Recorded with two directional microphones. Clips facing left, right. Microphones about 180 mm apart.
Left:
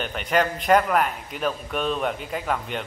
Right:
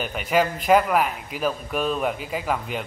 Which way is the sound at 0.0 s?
5° right (ahead or behind).